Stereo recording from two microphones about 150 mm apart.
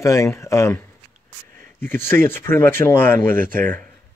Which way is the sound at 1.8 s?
15° left (ahead or behind).